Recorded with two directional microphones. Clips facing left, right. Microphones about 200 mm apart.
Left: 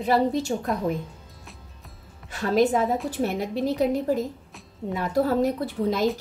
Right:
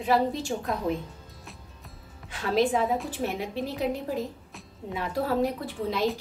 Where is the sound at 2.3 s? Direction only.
45° left (ahead or behind).